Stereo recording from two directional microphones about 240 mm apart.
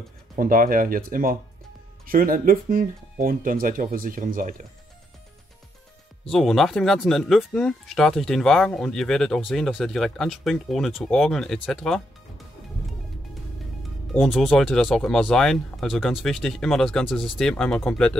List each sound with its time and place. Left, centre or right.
0.4 s speech: right
6.3 s speech: centre
14.1 s speech: centre